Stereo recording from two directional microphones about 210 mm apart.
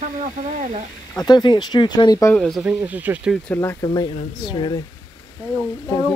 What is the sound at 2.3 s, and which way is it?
Speech, centre (ahead or behind).